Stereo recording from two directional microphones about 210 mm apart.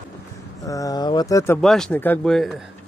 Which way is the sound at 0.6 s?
15° left (ahead or behind).